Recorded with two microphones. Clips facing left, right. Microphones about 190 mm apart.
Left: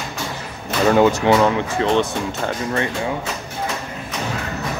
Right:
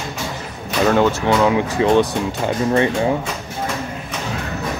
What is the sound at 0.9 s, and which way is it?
Speech, 10° left (ahead or behind).